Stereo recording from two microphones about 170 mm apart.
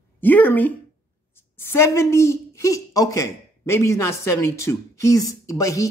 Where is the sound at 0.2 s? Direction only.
10° left (ahead or behind).